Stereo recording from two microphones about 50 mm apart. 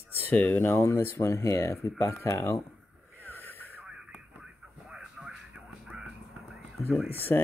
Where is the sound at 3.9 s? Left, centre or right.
Centre.